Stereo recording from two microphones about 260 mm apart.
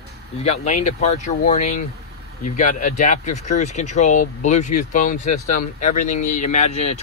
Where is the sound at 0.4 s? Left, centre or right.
Left.